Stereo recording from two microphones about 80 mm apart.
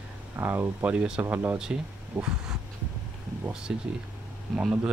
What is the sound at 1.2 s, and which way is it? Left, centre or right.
Speech, right.